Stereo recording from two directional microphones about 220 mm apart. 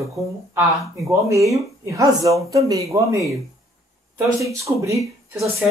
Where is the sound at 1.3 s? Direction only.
15° right (ahead or behind).